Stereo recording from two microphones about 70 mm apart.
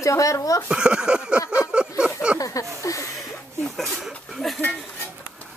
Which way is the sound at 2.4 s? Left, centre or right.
Left.